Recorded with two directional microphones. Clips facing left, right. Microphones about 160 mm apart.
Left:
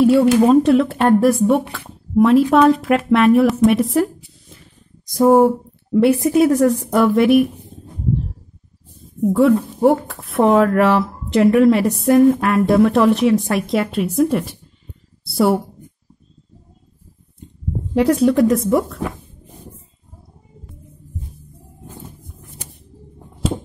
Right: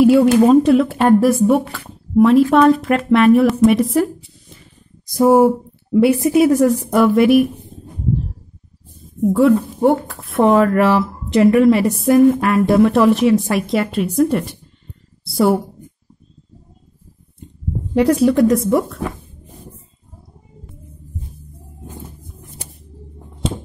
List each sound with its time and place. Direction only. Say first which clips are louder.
0.0 s speech: right 2 dB; centre (ahead or behind)
9.2 s speech: right 1 dB; centre (ahead or behind)
17.9 s speech: right 1 dB; centre (ahead or behind)